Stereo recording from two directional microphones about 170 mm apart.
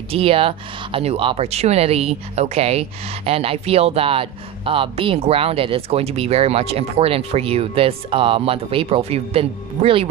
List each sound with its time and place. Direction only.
0.1 s speech: 35° right (ahead or behind)